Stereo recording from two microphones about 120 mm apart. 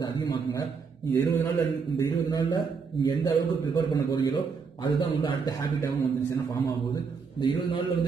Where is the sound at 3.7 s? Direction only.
35° left (ahead or behind).